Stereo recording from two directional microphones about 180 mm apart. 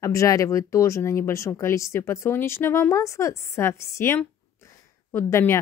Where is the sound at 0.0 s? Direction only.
20° left (ahead or behind).